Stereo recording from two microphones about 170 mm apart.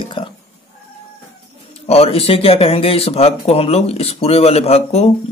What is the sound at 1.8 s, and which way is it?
Speech, 35° left (ahead or behind).